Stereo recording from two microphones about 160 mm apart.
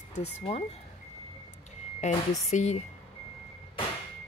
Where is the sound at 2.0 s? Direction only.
45° left (ahead or behind).